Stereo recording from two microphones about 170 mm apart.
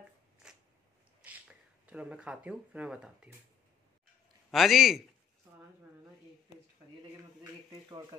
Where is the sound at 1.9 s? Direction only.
5° right (ahead or behind).